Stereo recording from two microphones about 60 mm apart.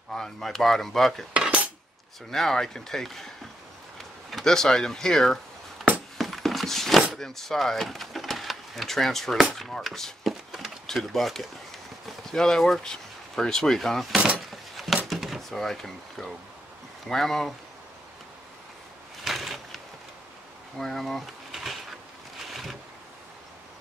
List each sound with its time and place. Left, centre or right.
0.1 s speech: centre
1.3 s cutlery: centre
2.3 s speech: centre
6.1 s a sound: centre
7.2 s speech: centre
10.2 s a sound: centre
12.1 s speech: centre
14.1 s a sound: centre
15.0 s door: centre
17.1 s speech: centre
19.2 s a sound: centre
20.8 s speech: centre
22.5 s boat: centre